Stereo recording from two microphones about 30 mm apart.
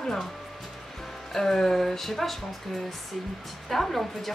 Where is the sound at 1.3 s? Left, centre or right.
Centre.